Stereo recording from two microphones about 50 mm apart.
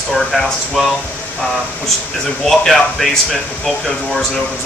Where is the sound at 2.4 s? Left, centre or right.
Centre.